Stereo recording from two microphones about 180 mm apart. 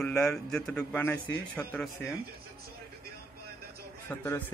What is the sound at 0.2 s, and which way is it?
Speech, 5° left (ahead or behind).